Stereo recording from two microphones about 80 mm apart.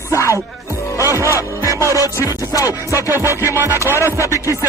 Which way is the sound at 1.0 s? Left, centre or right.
Right.